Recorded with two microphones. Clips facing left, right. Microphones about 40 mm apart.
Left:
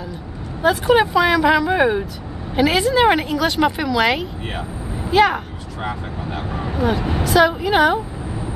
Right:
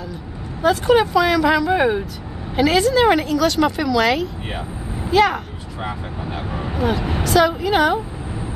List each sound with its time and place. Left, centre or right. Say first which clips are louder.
0.6 s speech: even; centre
5.1 s vehicle: left 1 dB; centre
7.3 s speech: left 1 dB; centre